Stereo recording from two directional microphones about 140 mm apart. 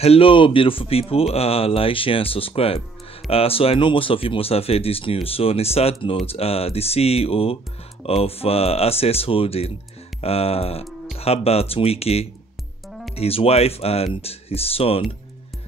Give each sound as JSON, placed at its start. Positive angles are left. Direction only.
{"t": 0.0, "sound": "speech", "side_deg": 45}